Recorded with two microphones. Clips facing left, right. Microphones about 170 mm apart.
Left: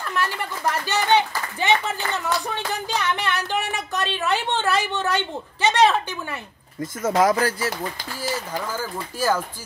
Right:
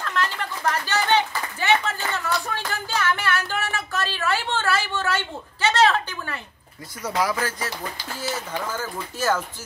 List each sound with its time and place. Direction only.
0.0 s speech: 10° left (ahead or behind)
2.4 s a sound: 20° left (ahead or behind)
6.8 s speech: 45° left (ahead or behind)
8.2 s speech: 10° left (ahead or behind)